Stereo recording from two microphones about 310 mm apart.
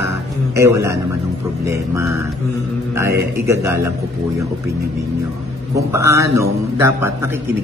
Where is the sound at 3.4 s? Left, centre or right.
Centre.